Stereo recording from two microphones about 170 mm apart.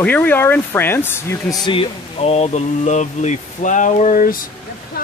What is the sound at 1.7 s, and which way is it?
Speech, 35° left (ahead or behind).